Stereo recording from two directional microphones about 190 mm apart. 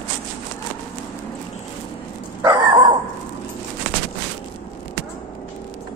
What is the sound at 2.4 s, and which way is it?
Dog, 20° right (ahead or behind).